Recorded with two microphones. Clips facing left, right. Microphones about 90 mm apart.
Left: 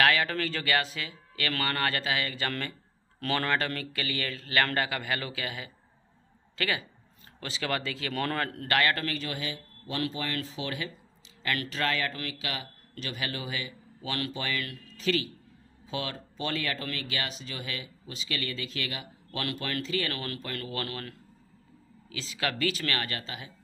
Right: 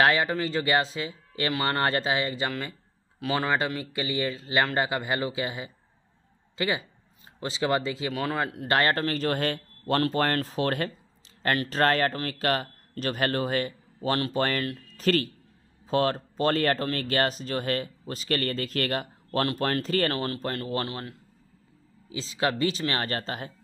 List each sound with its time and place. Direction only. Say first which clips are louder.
0.0 s speech: right 3 dB; 25° right (ahead or behind)
3.2 s speech: right 3 dB; 10° right (ahead or behind)
8.1 s speech: even; 5° right (ahead or behind)
8.6 s speech: right 3 dB; 30° right (ahead or behind); by 10.9 s 50° right (ahead or behind)
11.4 s speech: right 7 dB; 40° right (ahead or behind)
19.4 s speech: right 5 dB; 35° right (ahead or behind)
20.2 s speech: right 6 dB; 35° right (ahead or behind)
23.0 s speech: right 6 dB; 40° right (ahead or behind)